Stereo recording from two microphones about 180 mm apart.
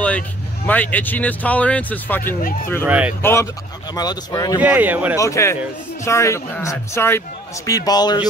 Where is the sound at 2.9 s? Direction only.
5° right (ahead or behind).